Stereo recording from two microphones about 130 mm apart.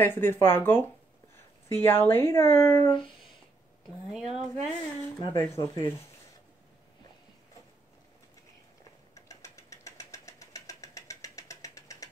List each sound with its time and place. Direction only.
0.0 s speech: 15° left (ahead or behind)
4.3 s speech: 5° right (ahead or behind)
5.2 s speech: 20° left (ahead or behind)
9.1 s engine: 25° left (ahead or behind)